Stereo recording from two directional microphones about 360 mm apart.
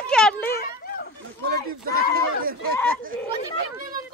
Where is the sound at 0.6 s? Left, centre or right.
Left.